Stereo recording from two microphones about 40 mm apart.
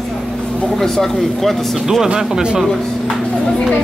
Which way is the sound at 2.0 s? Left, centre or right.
Right.